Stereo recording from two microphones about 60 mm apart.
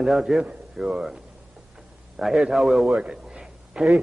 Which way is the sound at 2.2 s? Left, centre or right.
Centre.